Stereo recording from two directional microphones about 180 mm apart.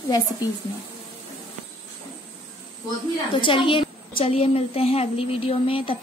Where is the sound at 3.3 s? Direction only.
30° left (ahead or behind).